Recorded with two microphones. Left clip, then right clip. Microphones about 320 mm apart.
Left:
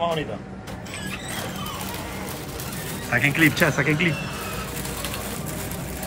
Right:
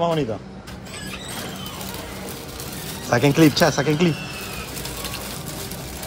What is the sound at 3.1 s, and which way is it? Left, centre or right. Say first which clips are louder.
Speech: right 3 dB; centre.